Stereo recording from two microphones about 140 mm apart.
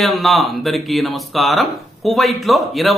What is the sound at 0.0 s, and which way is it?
Speech, centre (ahead or behind).